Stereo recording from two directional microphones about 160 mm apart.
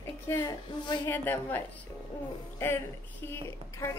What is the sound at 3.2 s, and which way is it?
Speech, 15° left (ahead or behind).